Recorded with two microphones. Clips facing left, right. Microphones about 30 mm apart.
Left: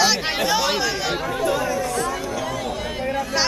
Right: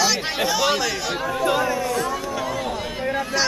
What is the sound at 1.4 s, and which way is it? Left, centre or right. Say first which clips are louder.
Speech: right 2 dB; right.